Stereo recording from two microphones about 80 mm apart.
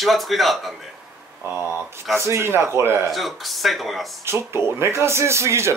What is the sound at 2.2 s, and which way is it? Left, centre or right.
Speech, right.